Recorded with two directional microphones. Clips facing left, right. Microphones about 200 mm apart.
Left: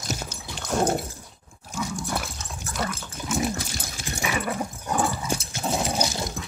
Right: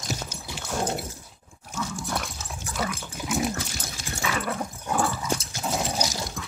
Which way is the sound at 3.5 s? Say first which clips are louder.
Left 1 dB; 15° left (ahead or behind).